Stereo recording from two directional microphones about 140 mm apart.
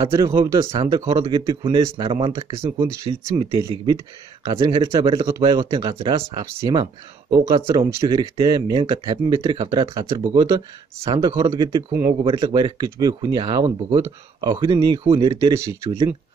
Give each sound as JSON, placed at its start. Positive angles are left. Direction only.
{"t": 0.1, "sound": "speech", "side_deg": -20}
{"t": 0.4, "sound": "speech", "side_deg": -40}
{"t": 3.3, "sound": "speech", "side_deg": -30}
{"t": 12.2, "sound": "speech", "side_deg": -35}